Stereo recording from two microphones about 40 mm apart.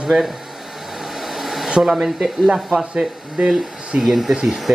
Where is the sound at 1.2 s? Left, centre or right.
Centre.